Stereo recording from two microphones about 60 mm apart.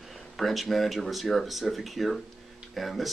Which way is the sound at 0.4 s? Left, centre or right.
Centre.